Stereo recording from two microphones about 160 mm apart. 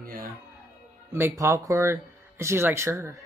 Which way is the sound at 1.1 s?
15° right (ahead or behind).